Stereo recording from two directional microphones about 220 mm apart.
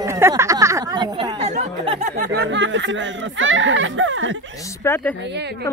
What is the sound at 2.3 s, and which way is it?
Speech, 55° right (ahead or behind).